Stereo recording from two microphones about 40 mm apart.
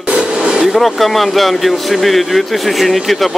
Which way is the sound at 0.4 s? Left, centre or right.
Centre.